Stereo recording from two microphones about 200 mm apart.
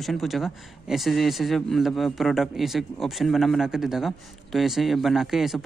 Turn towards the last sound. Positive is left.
turn(degrees=0)  # may be behind; listen again after turning